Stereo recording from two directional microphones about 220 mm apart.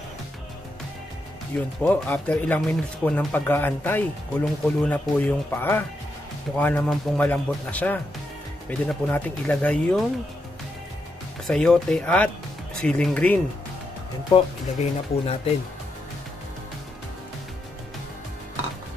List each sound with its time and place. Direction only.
1.8 s speech: 5° left (ahead or behind)
11.4 s speech: centre (ahead or behind)
14.3 s speech: 25° left (ahead or behind)